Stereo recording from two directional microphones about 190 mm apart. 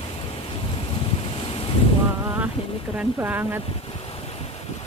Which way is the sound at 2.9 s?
10° right (ahead or behind).